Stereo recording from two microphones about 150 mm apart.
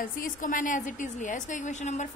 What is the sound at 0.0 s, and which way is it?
A woman's voice, 65° left (ahead or behind).